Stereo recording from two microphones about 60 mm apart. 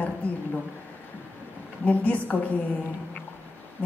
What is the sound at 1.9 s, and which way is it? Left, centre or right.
Speech, left.